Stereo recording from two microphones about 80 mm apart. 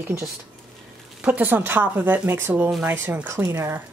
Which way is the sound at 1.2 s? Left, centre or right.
Right.